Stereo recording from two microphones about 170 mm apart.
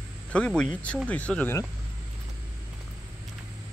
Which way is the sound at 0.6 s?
5° left (ahead or behind).